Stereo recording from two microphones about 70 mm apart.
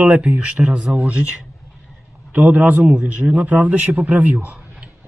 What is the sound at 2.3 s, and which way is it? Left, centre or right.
A man's voice, right.